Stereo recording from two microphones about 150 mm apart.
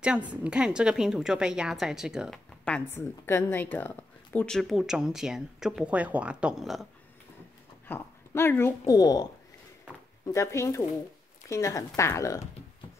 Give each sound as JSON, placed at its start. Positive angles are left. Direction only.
{"t": 0.0, "sound": "a woman's voice", "side_deg": -10}
{"t": 2.6, "sound": "a woman's voice", "side_deg": 10}
{"t": 7.9, "sound": "speech", "side_deg": 15}